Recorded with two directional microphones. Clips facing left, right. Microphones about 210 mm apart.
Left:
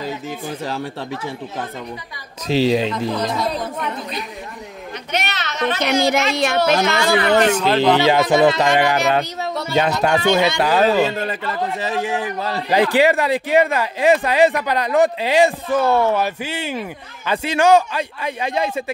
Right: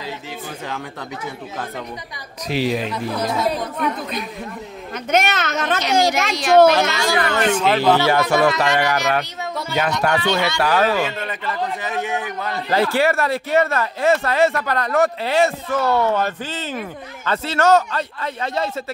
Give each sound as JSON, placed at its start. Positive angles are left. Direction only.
{"t": 2.4, "sound": "speech", "side_deg": 25}
{"t": 3.3, "sound": "speech", "side_deg": -5}
{"t": 5.1, "sound": "a child's voice", "side_deg": -50}
{"t": 5.8, "sound": "a woman's voice", "side_deg": 60}
{"t": 7.5, "sound": "speech", "side_deg": -5}
{"t": 7.8, "sound": "speech", "side_deg": 20}
{"t": 11.1, "sound": "a man's voice", "side_deg": 35}
{"t": 12.6, "sound": "speech", "side_deg": 15}